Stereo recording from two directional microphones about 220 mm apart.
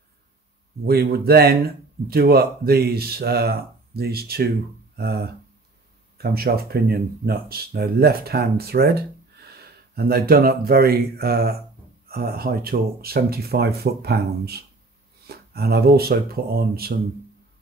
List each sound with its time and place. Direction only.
0.8 s speech: 45° right (ahead or behind)
4.9 s a sound: 45° right (ahead or behind)
6.1 s speech: 45° right (ahead or behind)